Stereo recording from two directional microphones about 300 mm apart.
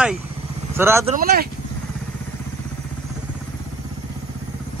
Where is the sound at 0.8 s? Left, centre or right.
Centre.